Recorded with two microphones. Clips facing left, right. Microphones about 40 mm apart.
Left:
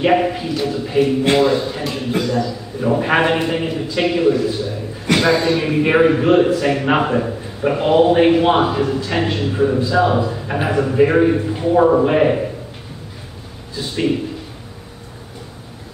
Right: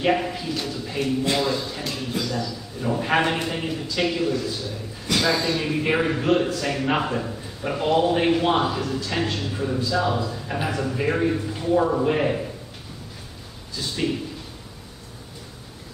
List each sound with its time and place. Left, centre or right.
0.0 s a man's voice: left
2.1 s a man's voice: left
2.4 s a man's voice: left
13.7 s a man's voice: left